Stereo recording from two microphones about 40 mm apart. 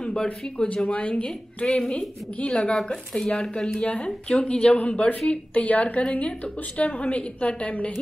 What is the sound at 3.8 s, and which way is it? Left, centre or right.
Speech, left.